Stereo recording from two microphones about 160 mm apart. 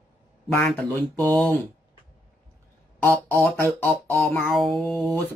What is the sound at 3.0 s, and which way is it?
Speech, 10° left (ahead or behind).